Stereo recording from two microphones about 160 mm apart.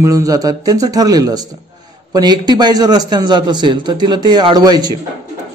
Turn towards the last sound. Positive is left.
turn(degrees=-25)  # may be behind; listen again after turning